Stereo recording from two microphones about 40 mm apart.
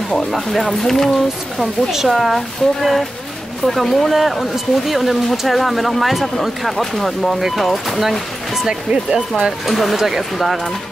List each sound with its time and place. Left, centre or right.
0.2 s speech: centre
1.6 s speech: centre
8.6 s speech: centre
9.7 s speech: centre